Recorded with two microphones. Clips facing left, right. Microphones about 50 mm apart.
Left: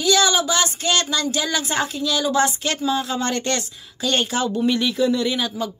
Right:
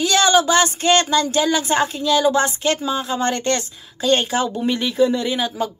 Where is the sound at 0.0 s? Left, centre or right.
Right.